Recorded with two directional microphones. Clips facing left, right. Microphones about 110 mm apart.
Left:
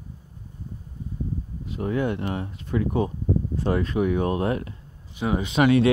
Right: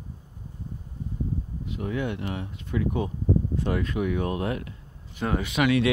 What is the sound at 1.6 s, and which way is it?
Speech, 35° left (ahead or behind).